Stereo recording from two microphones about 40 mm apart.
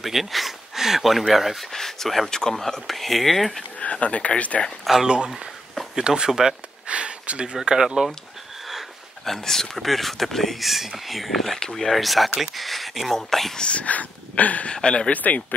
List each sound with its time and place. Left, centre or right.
0.0 s speech: centre
1.7 s speech: centre
3.8 s speech: left
5.0 s speech: right
6.9 s speech: right
7.5 s speech: centre
9.2 s speech: centre
13.6 s speech: left
14.7 s speech: left
15.1 s speech: left